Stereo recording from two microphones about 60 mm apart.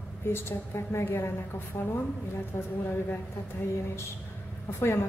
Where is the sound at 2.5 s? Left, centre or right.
Left.